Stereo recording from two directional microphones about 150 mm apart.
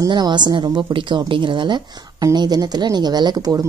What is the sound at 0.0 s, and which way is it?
A woman's voice, 30° right (ahead or behind).